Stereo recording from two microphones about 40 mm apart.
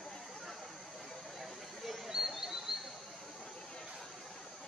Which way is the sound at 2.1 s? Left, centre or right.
Centre.